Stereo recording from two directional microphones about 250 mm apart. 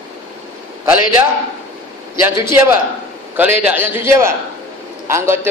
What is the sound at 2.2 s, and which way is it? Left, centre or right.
A man's voice, centre.